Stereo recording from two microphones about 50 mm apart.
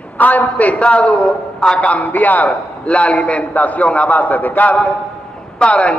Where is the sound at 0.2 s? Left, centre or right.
Left.